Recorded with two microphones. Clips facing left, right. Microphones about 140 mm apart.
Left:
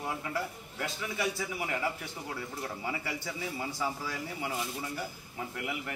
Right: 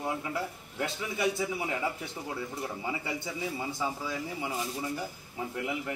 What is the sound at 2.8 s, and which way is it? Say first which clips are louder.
Speech: right 1 dB; 20° right (ahead or behind).